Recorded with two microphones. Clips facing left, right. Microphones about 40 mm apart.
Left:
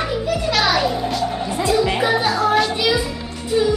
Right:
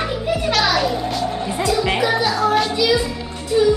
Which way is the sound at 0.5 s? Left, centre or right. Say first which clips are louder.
Left 1 dB; centre.